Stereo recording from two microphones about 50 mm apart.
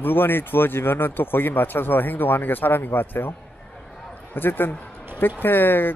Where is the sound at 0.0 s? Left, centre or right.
Left.